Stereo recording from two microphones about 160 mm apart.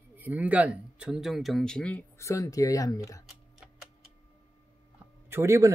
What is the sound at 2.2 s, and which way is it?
Speech, 20° left (ahead or behind).